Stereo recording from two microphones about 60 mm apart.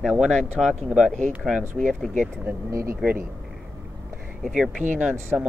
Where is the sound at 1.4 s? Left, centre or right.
Centre.